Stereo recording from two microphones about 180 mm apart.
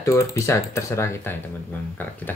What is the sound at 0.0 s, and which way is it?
Speech, 15° left (ahead or behind).